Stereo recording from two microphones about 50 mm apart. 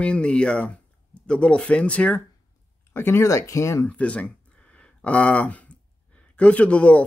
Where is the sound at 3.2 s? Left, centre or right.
Left.